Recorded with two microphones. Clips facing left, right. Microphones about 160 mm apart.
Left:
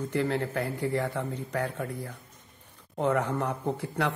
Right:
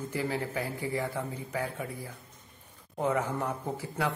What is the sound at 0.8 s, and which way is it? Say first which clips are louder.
Speech: left 4 dB; 70° left (ahead or behind).